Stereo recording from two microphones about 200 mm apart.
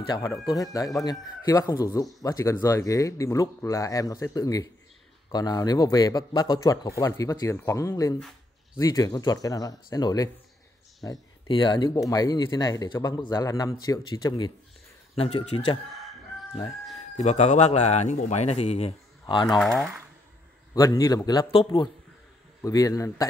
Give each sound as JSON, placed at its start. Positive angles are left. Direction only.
{"t": 0.1, "sound": "speech", "side_deg": 15}
{"t": 15.3, "sound": "speech", "side_deg": 90}
{"t": 17.2, "sound": "a man's voice", "side_deg": 35}
{"t": 19.6, "sound": "speech", "side_deg": 0}
{"t": 20.7, "sound": "speech", "side_deg": 20}